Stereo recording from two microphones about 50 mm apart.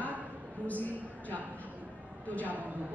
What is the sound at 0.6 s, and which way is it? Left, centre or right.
Speech, left.